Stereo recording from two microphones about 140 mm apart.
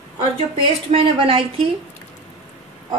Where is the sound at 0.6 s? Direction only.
40° right (ahead or behind).